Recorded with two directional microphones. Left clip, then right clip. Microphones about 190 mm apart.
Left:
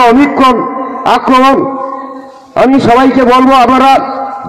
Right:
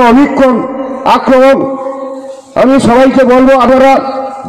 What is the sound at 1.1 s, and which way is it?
Speech, 40° right (ahead or behind).